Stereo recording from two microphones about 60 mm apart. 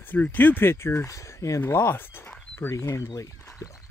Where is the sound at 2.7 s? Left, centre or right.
Left.